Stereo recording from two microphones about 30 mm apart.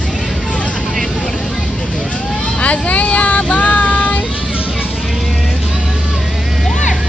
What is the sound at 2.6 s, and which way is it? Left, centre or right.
Vehicle, left.